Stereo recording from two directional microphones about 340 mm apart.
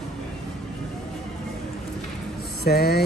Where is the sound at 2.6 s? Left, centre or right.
Left.